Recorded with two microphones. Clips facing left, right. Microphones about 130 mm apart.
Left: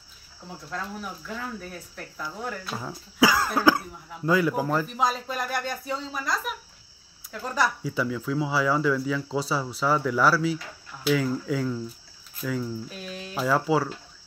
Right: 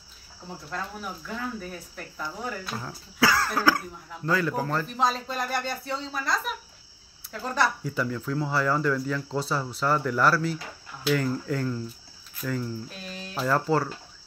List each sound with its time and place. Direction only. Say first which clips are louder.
0.7 s speech: left 1 dB; centre (ahead or behind)
2.7 s speech: left 1 dB; 15° left (ahead or behind)